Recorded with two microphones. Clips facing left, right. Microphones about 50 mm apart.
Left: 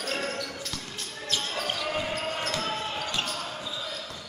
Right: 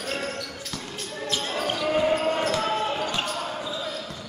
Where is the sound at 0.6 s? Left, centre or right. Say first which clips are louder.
Right 2 dB; centre.